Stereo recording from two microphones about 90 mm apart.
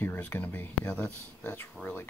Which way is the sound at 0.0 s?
20° left (ahead or behind).